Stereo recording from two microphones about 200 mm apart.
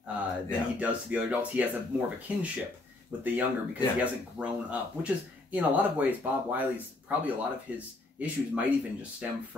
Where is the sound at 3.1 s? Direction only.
10° right (ahead or behind).